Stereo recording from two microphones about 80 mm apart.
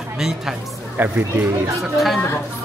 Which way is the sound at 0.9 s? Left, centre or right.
Right.